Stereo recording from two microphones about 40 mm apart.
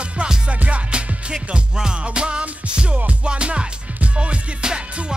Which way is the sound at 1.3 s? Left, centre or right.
Centre.